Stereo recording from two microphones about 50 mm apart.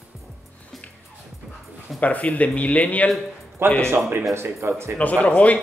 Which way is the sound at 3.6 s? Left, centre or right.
Right.